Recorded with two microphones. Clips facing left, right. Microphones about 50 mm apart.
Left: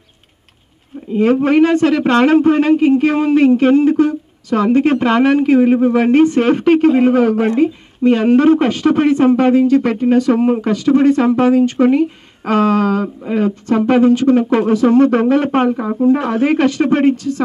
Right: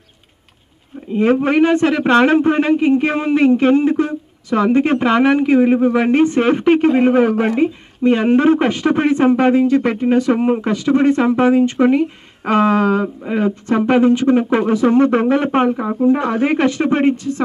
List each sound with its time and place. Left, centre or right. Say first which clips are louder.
1.1 s a man's voice: left 2 dB; right
5.4 s speech: left 1 dB; centre
5.9 s a man's voice: left 2 dB; right
6.9 s speech: left 2 dB; centre
7.2 s a man's voice: left 1 dB; right
15.7 s speech: left 1 dB; centre
16.3 s a man's voice: left 2 dB; right